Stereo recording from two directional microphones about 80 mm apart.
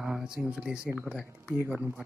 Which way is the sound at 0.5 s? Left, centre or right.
Centre.